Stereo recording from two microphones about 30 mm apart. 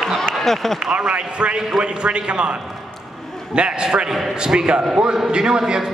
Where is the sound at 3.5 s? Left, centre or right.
Right.